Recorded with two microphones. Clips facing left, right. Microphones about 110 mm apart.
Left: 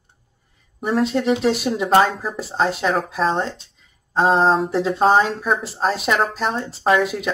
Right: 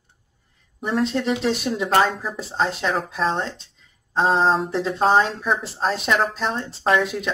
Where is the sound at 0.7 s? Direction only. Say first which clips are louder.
Left 3 dB; 5° left (ahead or behind).